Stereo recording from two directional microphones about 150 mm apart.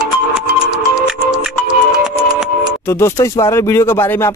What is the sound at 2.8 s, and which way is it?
Speech, 20° left (ahead or behind).